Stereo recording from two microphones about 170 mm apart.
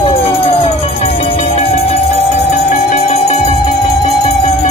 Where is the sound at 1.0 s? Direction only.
30° left (ahead or behind).